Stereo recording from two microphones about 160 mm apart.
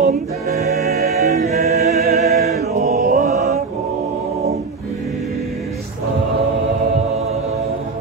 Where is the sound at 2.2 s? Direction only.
45° right (ahead or behind).